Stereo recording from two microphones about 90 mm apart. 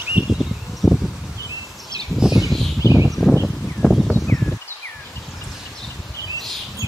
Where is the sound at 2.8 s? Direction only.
35° right (ahead or behind).